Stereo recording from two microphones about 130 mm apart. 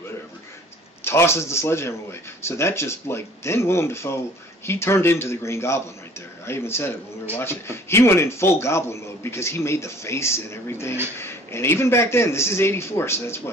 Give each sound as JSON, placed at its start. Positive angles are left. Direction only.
{"t": 1.0, "sound": "speech", "side_deg": 20}